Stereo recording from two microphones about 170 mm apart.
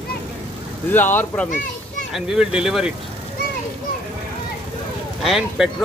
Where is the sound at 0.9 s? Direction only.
10° left (ahead or behind).